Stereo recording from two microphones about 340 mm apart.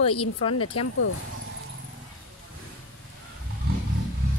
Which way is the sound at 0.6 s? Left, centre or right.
Left.